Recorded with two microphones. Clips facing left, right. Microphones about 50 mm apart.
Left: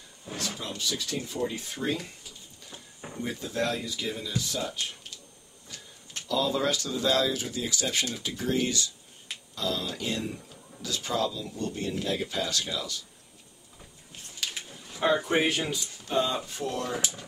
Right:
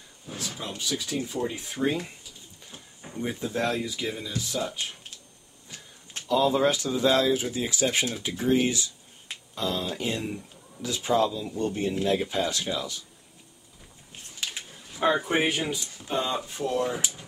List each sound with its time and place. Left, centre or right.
0.4 s speech: centre
3.2 s speech: right
14.5 s a sound: centre
15.0 s speech: centre